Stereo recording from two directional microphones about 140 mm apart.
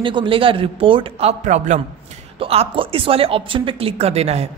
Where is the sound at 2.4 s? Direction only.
45° right (ahead or behind).